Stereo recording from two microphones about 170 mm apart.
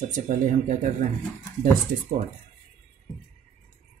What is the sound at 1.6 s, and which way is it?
Speech, 50° right (ahead or behind).